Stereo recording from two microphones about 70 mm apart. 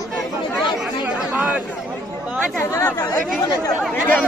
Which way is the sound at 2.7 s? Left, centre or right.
Left.